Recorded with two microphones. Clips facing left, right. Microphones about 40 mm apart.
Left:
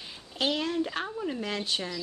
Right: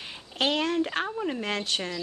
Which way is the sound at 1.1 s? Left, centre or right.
Right.